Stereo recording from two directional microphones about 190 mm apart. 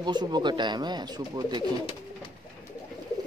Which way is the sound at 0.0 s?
25° right (ahead or behind).